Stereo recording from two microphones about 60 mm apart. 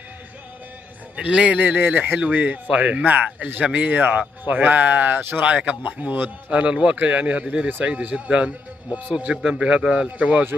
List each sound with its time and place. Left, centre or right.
1.1 s a man's voice: centre
6.5 s speech: centre